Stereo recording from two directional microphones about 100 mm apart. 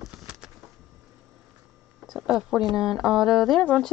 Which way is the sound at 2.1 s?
5° right (ahead or behind).